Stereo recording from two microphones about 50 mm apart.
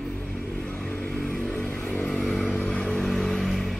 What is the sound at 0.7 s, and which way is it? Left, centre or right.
Vehicle, left.